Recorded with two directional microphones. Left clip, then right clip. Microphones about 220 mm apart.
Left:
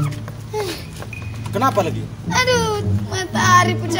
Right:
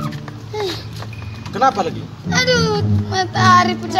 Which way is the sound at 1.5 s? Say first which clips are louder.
Right 2 dB; 35° left (ahead or behind).